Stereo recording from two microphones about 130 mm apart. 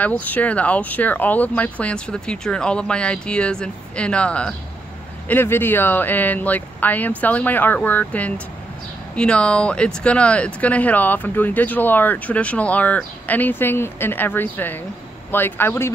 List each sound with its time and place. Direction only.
0.0 s speech: 10° left (ahead or behind)